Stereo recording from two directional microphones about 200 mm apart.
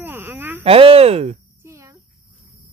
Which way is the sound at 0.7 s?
30° right (ahead or behind).